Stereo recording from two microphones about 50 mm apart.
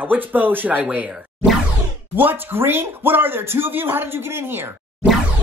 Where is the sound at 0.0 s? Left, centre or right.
Right.